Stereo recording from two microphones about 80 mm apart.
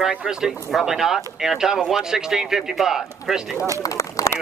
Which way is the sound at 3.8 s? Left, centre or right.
Left.